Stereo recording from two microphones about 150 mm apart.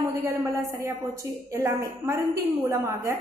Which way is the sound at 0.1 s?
20° right (ahead or behind).